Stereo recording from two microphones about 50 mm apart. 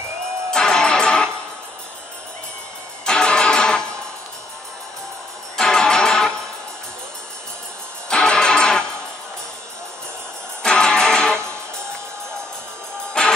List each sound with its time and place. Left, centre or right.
0.5 s music: centre
3.1 s music: centre
5.6 s music: centre
8.1 s music: centre
10.6 s music: centre
13.2 s music: centre